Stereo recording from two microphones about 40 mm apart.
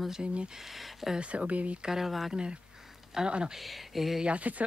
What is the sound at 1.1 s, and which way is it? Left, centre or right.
Speech, right.